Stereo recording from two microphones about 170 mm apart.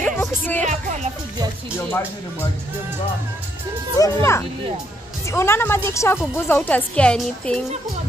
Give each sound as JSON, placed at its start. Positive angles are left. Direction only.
{"t": 0.0, "sound": "music", "side_deg": 10}
{"t": 0.7, "sound": "music", "side_deg": -50}
{"t": 1.8, "sound": "a woman's voice", "side_deg": 15}
{"t": 4.0, "sound": "a woman's voice", "side_deg": 15}